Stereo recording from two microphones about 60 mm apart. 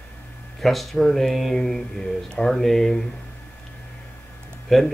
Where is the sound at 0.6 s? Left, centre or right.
Centre.